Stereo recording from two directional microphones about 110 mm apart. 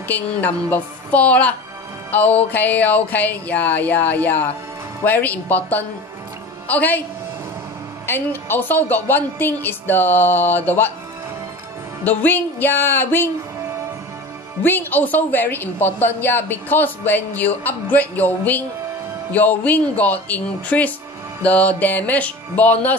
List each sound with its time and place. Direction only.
0.7 s a woman's voice: 15° left (ahead or behind)
8.1 s a woman's voice: 20° left (ahead or behind)
12.0 s a woman's voice: 15° left (ahead or behind)
14.6 s a woman's voice: 15° left (ahead or behind)